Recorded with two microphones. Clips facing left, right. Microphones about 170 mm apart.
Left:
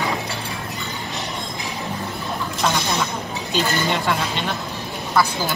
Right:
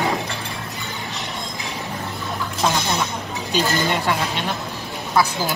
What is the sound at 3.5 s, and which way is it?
Speech, 5° right (ahead or behind).